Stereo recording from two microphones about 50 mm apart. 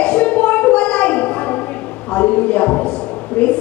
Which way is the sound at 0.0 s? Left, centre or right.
Left.